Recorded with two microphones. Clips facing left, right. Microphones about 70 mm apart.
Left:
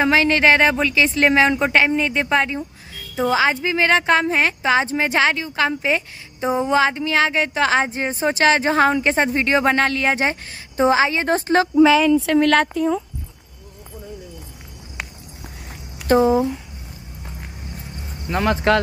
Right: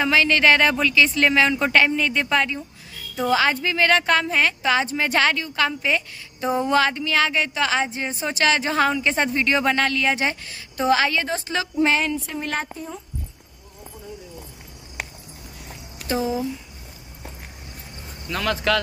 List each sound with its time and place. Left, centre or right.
0.0 s speech: left
11.2 s speech: left
12.3 s speech: left
16.1 s speech: left
18.3 s speech: left